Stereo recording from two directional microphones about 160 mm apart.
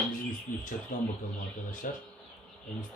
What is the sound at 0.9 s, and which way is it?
A man's voice, 55° left (ahead or behind).